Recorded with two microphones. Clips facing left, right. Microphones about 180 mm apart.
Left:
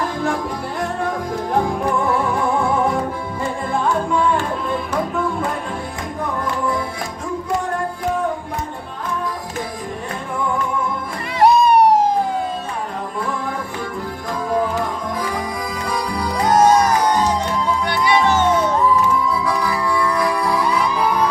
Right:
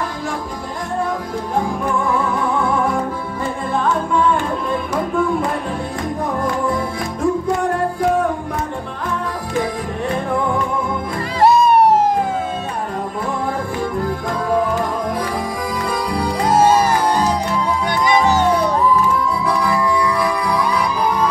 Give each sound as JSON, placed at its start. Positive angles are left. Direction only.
{"t": 11.4, "sound": "music", "side_deg": 0}
{"t": 16.5, "sound": "music", "side_deg": -5}
{"t": 17.8, "sound": "music", "side_deg": -45}